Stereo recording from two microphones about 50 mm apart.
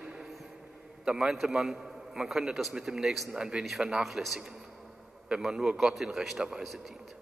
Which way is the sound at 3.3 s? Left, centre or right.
Centre.